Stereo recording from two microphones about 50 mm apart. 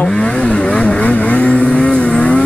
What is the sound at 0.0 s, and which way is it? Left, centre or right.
Vehicle, left.